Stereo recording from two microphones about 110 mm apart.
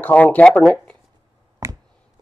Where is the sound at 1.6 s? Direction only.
25° right (ahead or behind).